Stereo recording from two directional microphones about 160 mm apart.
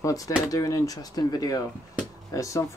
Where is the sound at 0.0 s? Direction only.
20° left (ahead or behind).